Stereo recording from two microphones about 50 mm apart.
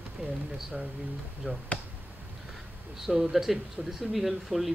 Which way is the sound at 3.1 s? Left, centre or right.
Centre.